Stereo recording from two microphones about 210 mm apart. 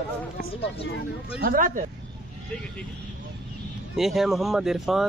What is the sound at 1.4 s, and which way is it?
Speech, 40° right (ahead or behind).